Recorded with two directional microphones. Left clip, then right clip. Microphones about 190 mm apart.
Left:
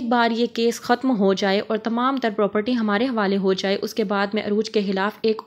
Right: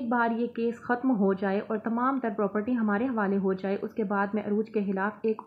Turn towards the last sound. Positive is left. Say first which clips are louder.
# left 7 dB
turn(degrees=30)  # may be behind; listen again after turning